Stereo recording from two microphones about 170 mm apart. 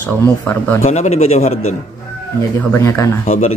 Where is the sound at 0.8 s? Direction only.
40° left (ahead or behind).